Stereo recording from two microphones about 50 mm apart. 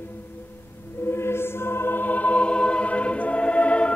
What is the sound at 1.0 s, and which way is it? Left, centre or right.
Choir, left.